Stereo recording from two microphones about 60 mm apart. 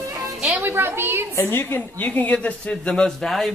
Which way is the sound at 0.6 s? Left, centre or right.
Right.